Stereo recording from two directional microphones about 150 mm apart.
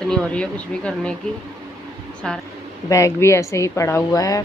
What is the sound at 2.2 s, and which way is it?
Speech, 5° left (ahead or behind).